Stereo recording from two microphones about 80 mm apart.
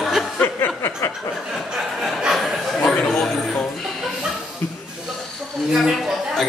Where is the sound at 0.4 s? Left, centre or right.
Left.